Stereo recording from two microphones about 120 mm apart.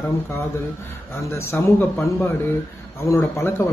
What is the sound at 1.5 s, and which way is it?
Speech, 20° left (ahead or behind).